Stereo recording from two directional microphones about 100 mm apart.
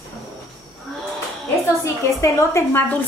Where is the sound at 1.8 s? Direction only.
25° left (ahead or behind).